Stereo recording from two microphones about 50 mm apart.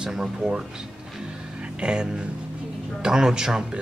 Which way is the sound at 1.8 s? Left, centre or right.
Centre.